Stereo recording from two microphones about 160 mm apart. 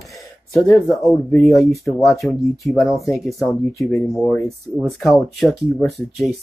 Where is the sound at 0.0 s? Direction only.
Centre (ahead or behind).